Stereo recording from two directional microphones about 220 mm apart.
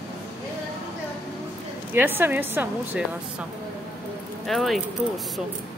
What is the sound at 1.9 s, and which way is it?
A woman's voice, 10° right (ahead or behind).